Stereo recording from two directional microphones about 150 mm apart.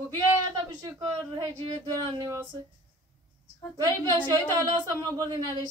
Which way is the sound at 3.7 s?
25° right (ahead or behind).